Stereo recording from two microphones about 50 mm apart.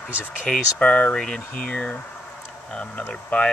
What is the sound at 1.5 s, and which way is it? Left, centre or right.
Speech, left.